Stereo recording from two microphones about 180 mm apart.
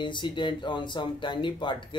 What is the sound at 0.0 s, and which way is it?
Speech, 25° left (ahead or behind).